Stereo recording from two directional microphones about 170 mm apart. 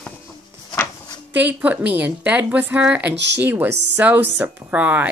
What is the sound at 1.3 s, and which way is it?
A woman's voice, 10° right (ahead or behind).